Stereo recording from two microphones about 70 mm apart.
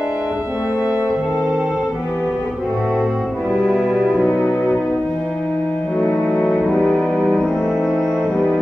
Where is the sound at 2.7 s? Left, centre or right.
Centre.